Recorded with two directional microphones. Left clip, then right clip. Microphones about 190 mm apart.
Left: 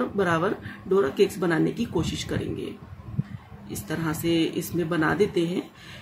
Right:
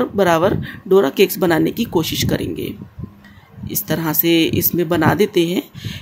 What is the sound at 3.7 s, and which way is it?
Speech, 45° right (ahead or behind).